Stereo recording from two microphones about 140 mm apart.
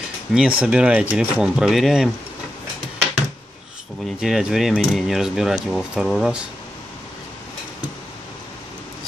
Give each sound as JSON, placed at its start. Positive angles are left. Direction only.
{"t": 0.3, "sound": "speech", "side_deg": -5}
{"t": 4.2, "sound": "speech", "side_deg": -5}